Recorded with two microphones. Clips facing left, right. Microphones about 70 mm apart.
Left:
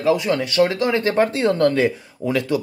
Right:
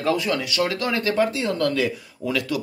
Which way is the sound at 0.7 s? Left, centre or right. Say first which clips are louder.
Left 4 dB; left.